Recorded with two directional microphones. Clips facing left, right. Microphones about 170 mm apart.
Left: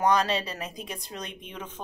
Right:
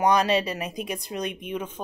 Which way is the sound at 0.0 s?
15° right (ahead or behind).